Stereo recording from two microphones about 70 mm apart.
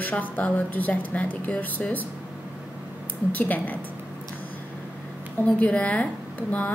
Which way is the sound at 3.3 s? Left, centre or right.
Left.